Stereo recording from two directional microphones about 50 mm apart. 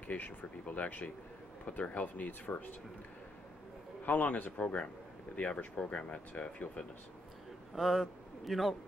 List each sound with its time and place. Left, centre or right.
0.0 s speech: left
4.0 s speech: left
7.7 s a man's voice: centre